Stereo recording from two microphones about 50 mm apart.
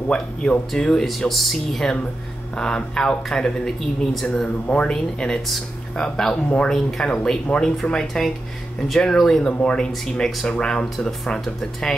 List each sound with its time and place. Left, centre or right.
0.1 s speech: centre
2.5 s speech: centre
4.6 s speech: left
6.3 s speech: left
6.7 s speech: centre
7.8 s speech: left
8.8 s speech: centre
9.4 s speech: left
10.0 s speech: centre